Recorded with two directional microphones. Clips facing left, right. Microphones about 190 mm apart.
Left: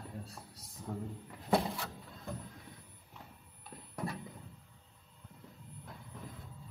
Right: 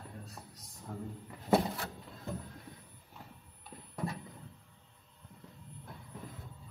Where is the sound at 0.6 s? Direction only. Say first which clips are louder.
Left 2 dB; centre (ahead or behind).